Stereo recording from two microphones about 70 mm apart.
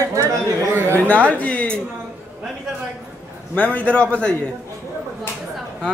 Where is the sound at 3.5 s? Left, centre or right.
Left.